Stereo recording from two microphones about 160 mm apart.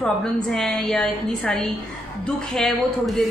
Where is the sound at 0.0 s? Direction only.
5° left (ahead or behind).